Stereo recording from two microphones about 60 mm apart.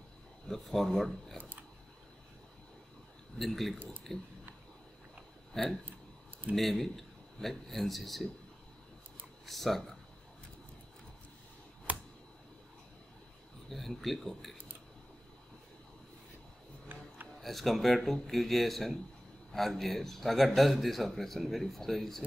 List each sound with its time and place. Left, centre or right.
0.5 s a man's voice: centre
3.3 s a man's voice: centre
5.5 s a man's voice: centre
9.5 s a man's voice: centre
11.9 s a sound: right
13.7 s speech: centre
17.4 s a man's voice: centre